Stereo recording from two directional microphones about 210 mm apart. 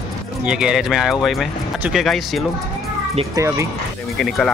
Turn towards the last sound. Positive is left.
turn(degrees=5)  # may be behind; listen again after turning